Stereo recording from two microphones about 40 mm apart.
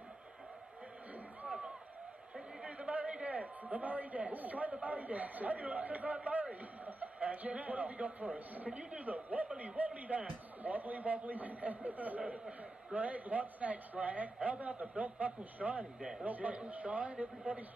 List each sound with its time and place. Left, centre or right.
2.9 s a sound: right
4.8 s a man's voice: right
12.2 s a man's voice: right
16.0 s a man's voice: centre
16.3 s a man's voice: right